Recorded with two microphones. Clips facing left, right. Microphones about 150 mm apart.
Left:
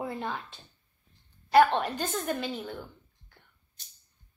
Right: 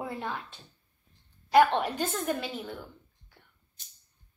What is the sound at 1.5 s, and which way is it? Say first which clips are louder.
A woman's voice: even; 10° right (ahead or behind).